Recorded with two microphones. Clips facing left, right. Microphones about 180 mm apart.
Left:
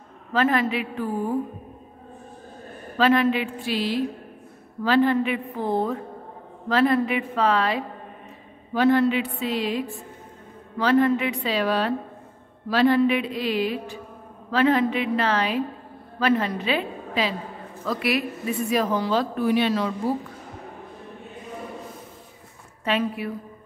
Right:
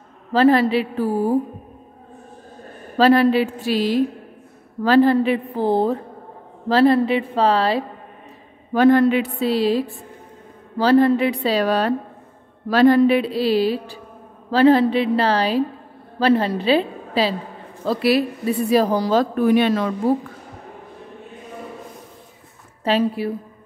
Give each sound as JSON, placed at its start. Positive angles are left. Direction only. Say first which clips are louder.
{"t": 0.3, "sound": "a woman's voice", "louder": "right 7 dB", "side_deg": -35}
{"t": 3.0, "sound": "a woman's voice", "louder": "right 5 dB", "side_deg": -35}
{"t": 8.7, "sound": "a woman's voice", "louder": "right 5 dB", "side_deg": -50}
{"t": 22.8, "sound": "a woman's voice", "louder": "right 6 dB", "side_deg": -30}